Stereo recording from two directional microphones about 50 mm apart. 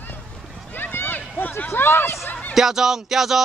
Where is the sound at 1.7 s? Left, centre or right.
Left.